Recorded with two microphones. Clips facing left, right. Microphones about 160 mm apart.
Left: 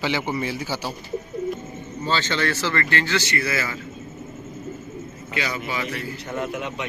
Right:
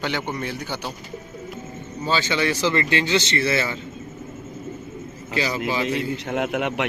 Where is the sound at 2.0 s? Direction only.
15° right (ahead or behind).